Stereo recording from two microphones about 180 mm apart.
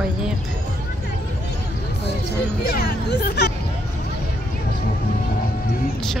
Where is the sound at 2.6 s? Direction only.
60° left (ahead or behind).